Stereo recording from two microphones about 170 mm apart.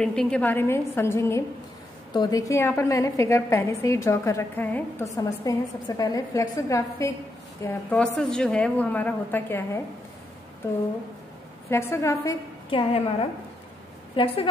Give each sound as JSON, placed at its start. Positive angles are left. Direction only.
{"t": 0.0, "sound": "a woman's voice", "side_deg": 5}
{"t": 7.6, "sound": "a woman's voice", "side_deg": 5}
{"t": 11.7, "sound": "a woman's voice", "side_deg": 15}
{"t": 12.6, "sound": "a woman's voice", "side_deg": 30}
{"t": 14.1, "sound": "a woman's voice", "side_deg": 30}